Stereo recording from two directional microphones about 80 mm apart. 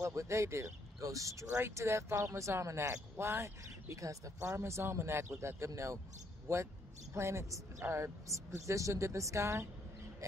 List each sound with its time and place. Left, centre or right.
0.0 s speech: right